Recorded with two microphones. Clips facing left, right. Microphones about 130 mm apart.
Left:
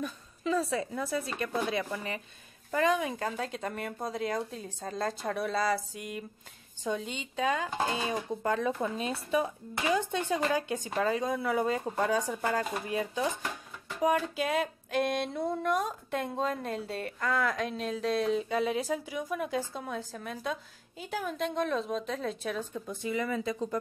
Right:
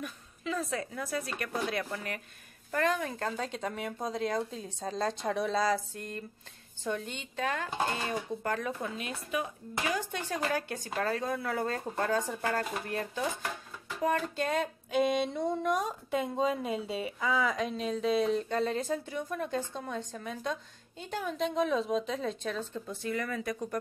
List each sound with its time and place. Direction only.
0.0 s speech: 35° left (ahead or behind)